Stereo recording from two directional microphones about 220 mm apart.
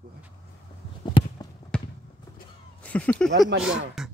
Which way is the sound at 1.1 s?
25° left (ahead or behind).